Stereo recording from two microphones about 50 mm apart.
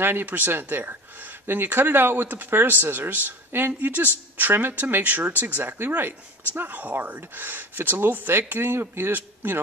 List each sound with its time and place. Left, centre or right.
0.0 s speech: right